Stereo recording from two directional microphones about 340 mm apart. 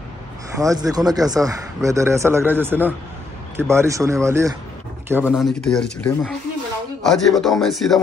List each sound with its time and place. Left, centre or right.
0.6 s a man's voice: centre